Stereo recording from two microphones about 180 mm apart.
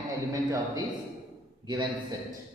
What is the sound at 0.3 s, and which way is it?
Speech, 20° right (ahead or behind).